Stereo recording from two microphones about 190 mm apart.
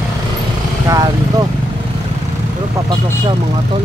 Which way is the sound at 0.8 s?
20° right (ahead or behind).